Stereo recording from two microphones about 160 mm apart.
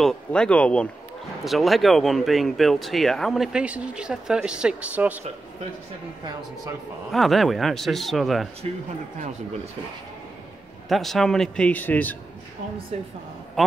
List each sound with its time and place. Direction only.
0.0 s speech: 5° left (ahead or behind)
7.1 s speech: centre (ahead or behind)
10.9 s speech: centre (ahead or behind)
12.9 s a woman's voice: 40° right (ahead or behind)
13.6 s speech: centre (ahead or behind)